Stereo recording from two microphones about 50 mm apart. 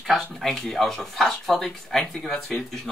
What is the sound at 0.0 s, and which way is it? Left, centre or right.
Speech, centre.